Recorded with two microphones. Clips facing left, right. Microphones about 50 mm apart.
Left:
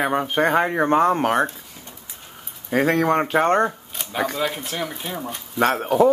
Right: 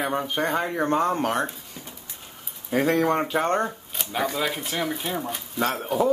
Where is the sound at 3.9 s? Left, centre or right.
Centre.